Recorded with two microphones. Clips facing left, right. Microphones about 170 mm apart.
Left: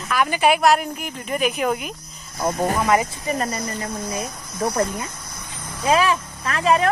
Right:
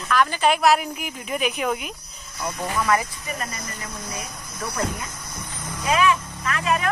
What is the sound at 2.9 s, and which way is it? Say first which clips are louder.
Speech: left 4 dB; 20° left (ahead or behind).